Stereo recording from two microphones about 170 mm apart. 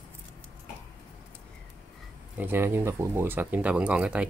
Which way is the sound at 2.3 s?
10° right (ahead or behind).